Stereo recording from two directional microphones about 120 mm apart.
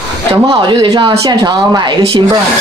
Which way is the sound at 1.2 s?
35° right (ahead or behind).